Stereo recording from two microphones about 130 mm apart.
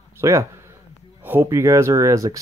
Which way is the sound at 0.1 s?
20° right (ahead or behind).